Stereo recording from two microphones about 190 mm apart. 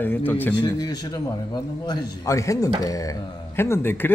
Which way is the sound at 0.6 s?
20° left (ahead or behind).